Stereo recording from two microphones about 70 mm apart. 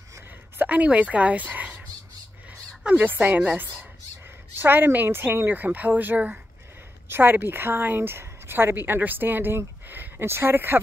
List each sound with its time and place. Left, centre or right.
0.6 s a woman's voice: right
4.6 s a woman's voice: right